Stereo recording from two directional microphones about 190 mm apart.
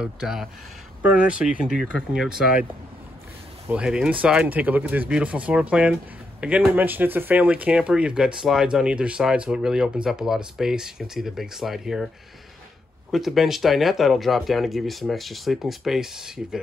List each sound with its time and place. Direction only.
0.0 s speech: 5° right (ahead or behind)
3.6 s speech: 5° right (ahead or behind)
13.1 s speech: centre (ahead or behind)